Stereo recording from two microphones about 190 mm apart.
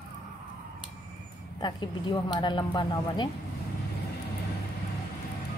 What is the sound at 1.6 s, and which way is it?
Speech, 25° left (ahead or behind).